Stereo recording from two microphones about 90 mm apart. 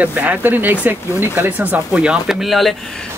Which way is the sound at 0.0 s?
15° right (ahead or behind).